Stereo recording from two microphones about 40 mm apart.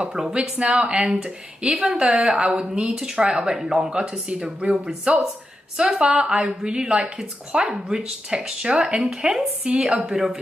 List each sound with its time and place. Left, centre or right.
0.2 s speech: centre
1.7 s a woman's voice: centre
2.0 s speech: centre
3.3 s speech: right
3.5 s speech: centre
9.1 s speech: centre